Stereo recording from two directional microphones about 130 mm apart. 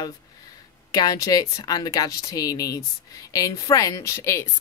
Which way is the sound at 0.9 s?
30° left (ahead or behind).